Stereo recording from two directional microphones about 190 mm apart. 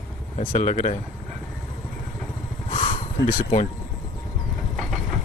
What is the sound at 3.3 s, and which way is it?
Speech, 40° left (ahead or behind).